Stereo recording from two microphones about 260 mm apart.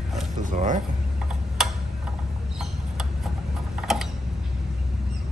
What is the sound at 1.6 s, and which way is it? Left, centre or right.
Tick-tock, centre.